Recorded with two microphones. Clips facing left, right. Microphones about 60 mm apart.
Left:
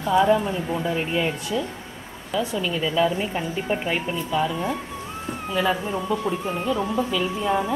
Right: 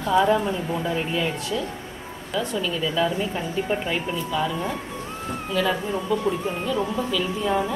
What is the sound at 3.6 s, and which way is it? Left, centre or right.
Speech, centre.